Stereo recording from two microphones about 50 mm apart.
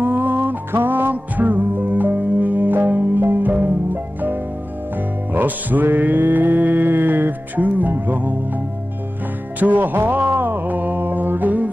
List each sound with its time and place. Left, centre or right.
0.0 s music: right
9.6 s music: right